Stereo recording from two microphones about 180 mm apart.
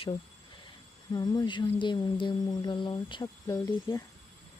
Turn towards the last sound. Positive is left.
turn(degrees=20)  # may be behind; listen again after turning